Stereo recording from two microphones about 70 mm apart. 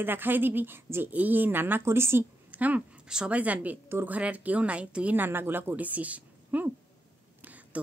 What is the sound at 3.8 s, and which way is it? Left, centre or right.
Speech, right.